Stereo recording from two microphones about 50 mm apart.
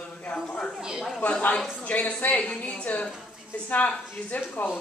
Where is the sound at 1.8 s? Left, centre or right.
Left.